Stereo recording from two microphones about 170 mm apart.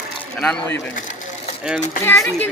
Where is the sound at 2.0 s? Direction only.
15° left (ahead or behind).